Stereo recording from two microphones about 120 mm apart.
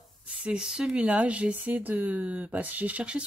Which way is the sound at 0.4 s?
10° right (ahead or behind).